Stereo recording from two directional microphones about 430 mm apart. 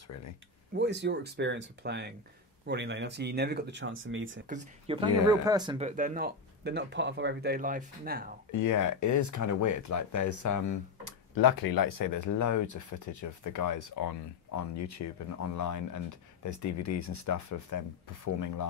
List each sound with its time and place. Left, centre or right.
0.7 s speech: right
8.5 s speech: left
11.1 s speech: left